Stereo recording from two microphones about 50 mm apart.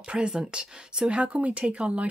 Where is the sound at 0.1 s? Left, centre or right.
Centre.